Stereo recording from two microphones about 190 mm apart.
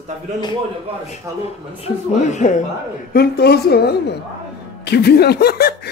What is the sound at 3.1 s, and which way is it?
A woman's voice, 55° left (ahead or behind).